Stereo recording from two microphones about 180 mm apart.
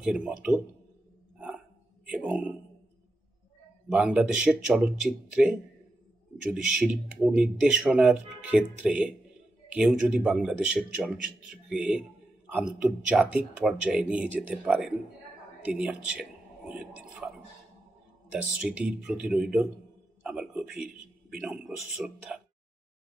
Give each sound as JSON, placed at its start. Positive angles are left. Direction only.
{"t": 0.0, "sound": "speech", "side_deg": -5}
{"t": 2.0, "sound": "a man's voice", "side_deg": -5}
{"t": 3.9, "sound": "speech", "side_deg": -5}
{"t": 18.3, "sound": "a man's voice", "side_deg": -5}